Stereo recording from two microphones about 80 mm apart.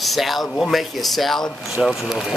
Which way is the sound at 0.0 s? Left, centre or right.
Centre.